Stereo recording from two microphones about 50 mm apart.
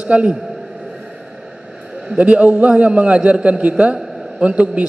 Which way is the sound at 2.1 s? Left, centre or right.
Right.